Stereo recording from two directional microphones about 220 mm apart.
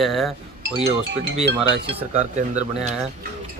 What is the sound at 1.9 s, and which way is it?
Speech, 30° right (ahead or behind).